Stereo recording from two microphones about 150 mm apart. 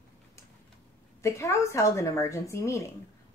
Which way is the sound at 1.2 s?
20° left (ahead or behind).